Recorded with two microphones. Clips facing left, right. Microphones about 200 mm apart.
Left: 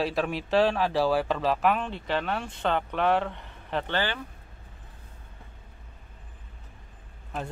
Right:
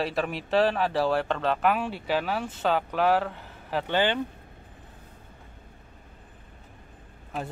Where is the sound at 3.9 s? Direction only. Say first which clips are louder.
Right 6 dB; 20° right (ahead or behind).